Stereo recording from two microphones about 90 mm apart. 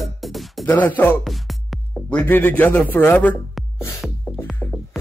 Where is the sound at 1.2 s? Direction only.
Centre (ahead or behind).